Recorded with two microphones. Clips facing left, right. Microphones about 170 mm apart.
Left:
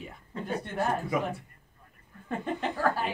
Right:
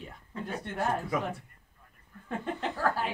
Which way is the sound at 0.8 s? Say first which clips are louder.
Left 1 dB; 10° left (ahead or behind).